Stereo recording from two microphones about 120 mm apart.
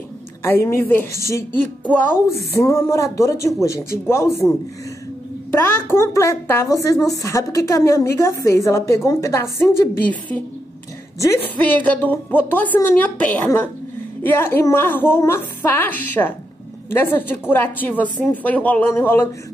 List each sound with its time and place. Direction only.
0.4 s a woman's voice: 20° left (ahead or behind)
5.5 s a woman's voice: 20° left (ahead or behind)